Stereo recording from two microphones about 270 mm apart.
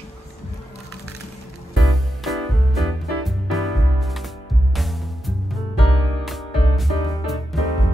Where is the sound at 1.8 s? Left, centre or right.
Centre.